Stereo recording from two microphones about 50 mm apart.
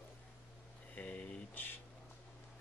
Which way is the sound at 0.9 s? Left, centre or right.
Left.